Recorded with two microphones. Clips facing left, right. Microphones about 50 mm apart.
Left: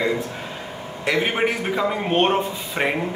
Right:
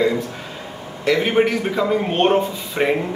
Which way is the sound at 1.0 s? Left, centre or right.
Centre.